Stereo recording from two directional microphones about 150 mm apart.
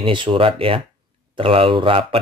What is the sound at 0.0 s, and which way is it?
Speech, 35° right (ahead or behind).